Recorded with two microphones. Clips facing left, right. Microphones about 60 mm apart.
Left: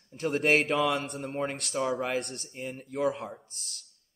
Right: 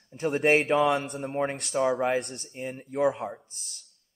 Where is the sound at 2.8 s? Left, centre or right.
Right.